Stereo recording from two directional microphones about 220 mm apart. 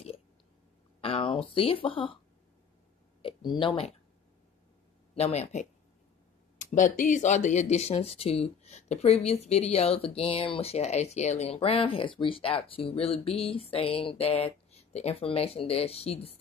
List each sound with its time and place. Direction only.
1.0 s speech: 25° left (ahead or behind)
3.2 s speech: 25° left (ahead or behind)
5.1 s speech: 30° left (ahead or behind)